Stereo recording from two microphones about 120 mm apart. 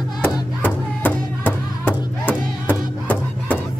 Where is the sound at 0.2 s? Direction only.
15° left (ahead or behind).